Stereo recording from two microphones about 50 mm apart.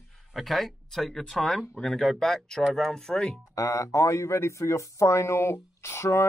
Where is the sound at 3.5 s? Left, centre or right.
Left.